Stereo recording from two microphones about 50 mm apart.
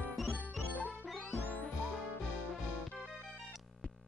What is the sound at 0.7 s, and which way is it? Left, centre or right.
Music, left.